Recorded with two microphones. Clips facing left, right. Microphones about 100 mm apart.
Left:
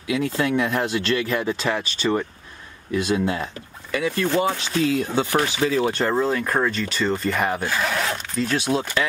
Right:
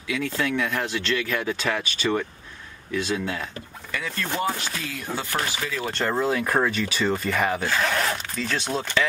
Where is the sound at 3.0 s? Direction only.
10° left (ahead or behind).